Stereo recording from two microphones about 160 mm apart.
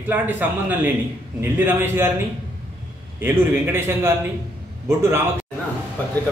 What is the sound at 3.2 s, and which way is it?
A man's voice, 15° right (ahead or behind).